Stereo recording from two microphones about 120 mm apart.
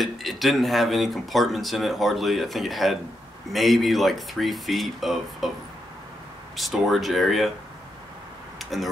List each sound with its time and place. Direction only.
0.0 s speech: centre (ahead or behind)
6.5 s speech: centre (ahead or behind)
8.5 s a sound: centre (ahead or behind)